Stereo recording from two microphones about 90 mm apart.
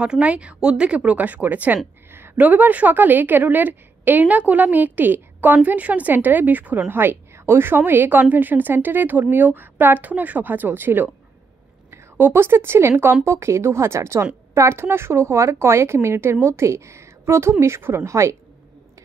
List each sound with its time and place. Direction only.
0.0 s a woman's voice: 15° right (ahead or behind); by 18.3 s 30° right (ahead or behind)